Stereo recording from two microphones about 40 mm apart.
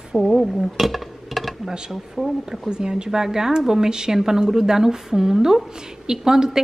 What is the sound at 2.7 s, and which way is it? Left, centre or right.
A woman's voice, centre.